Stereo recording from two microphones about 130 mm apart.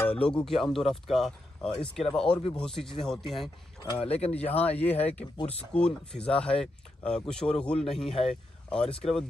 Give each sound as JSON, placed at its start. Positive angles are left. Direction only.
{"t": 0.1, "sound": "speech", "side_deg": 10}
{"t": 3.8, "sound": "speech", "side_deg": 45}
{"t": 4.6, "sound": "speech", "side_deg": 10}
{"t": 5.4, "sound": "speech", "side_deg": 50}
{"t": 5.7, "sound": "speech", "side_deg": 5}
{"t": 8.8, "sound": "speech", "side_deg": 45}